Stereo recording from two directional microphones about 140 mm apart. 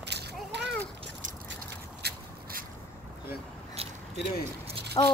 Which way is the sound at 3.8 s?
45° right (ahead or behind).